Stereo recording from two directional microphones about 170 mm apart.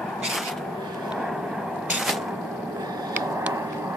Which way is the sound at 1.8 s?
5° right (ahead or behind).